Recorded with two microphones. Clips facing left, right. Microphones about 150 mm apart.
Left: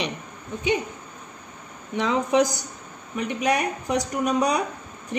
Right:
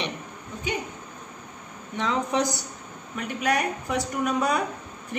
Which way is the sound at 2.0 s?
15° left (ahead or behind).